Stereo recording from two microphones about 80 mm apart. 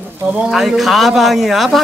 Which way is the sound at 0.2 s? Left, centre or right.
Right.